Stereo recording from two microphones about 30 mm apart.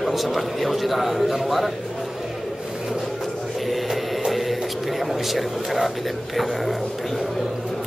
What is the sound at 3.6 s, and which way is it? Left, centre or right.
Music, centre.